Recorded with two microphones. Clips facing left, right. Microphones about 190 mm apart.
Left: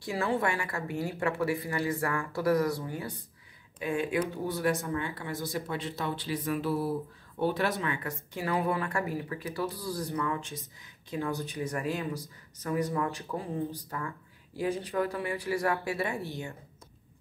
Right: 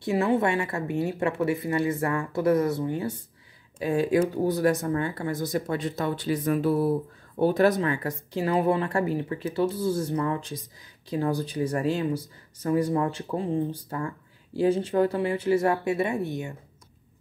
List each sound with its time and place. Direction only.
0.0 s speech: 20° right (ahead or behind)
3.8 s speech: 35° right (ahead or behind); by 16.5 s 20° right (ahead or behind)